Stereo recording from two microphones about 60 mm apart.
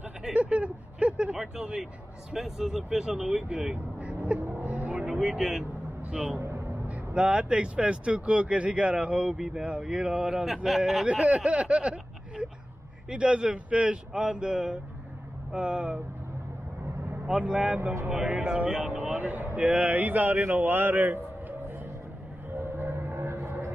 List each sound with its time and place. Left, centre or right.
0.2 s vehicle: centre
2.3 s speech: centre
3.7 s vehicle: right
5.1 s speech: centre
6.0 s speech: right
6.4 s music: right
6.9 s speech: centre
11.1 s speech: centre
17.4 s speech: centre
19.1 s a man's voice: right
22.5 s music: right